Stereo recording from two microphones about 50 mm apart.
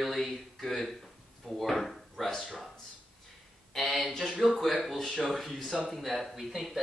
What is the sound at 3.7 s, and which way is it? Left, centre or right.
Speech, centre.